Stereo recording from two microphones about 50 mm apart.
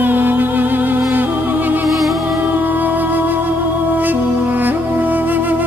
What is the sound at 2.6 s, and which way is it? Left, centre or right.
Music, right.